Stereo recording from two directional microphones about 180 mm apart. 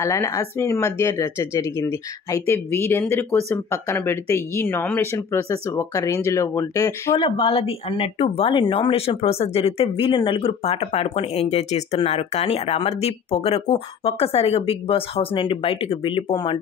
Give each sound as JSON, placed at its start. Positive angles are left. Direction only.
{"t": 0.0, "sound": "speech", "side_deg": 15}
{"t": 7.2, "sound": "speech", "side_deg": 30}